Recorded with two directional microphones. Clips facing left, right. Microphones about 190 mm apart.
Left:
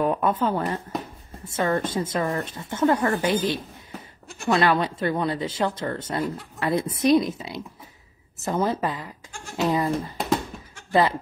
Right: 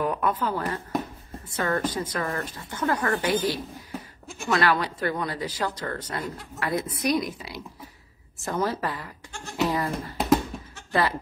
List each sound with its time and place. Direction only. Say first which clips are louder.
0.0 s a woman's voice: left 3 dB; 25° left (ahead or behind)
4.5 s speech: left 3 dB; 25° left (ahead or behind)
6.2 s speech: left 5 dB; centre (ahead or behind)
6.6 s speech: left 4 dB; 25° left (ahead or behind)